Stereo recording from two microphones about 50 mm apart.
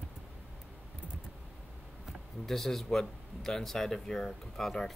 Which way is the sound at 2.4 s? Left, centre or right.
Centre.